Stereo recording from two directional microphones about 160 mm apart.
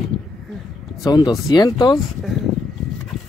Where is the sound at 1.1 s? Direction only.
25° left (ahead or behind).